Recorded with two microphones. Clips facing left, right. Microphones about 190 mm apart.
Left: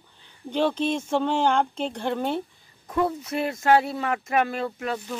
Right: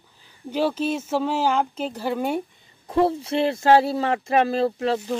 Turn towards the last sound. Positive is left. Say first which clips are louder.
# right 7 dB
turn(degrees=-30)  # may be behind; listen again after turning